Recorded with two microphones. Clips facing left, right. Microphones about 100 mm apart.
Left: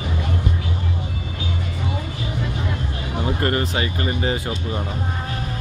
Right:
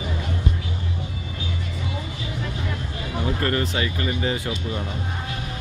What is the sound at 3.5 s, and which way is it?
Speech, 30° left (ahead or behind).